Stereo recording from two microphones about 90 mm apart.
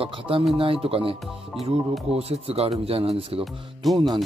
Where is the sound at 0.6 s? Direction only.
90° right.